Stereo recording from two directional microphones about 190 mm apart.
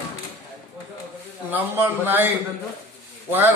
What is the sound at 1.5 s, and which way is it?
Speech, 10° right (ahead or behind).